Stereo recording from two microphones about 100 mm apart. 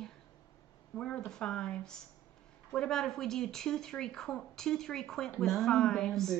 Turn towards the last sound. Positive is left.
turn(degrees=5)  # may be behind; listen again after turning